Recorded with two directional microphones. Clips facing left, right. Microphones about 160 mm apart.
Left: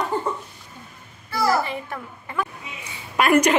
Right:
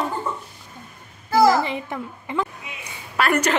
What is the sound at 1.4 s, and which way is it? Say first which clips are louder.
A woman's voice: right 4 dB; 20° right (ahead or behind).